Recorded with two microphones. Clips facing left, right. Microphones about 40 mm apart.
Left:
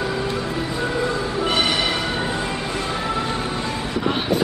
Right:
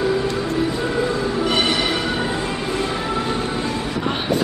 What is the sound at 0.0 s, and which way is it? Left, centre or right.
Music, centre.